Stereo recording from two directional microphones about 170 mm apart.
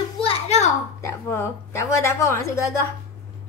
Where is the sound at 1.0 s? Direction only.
15° left (ahead or behind).